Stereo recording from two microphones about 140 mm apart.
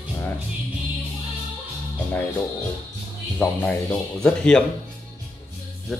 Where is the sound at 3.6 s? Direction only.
5° left (ahead or behind).